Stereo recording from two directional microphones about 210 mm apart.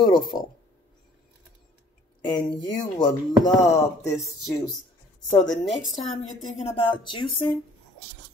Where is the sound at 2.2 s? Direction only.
20° left (ahead or behind).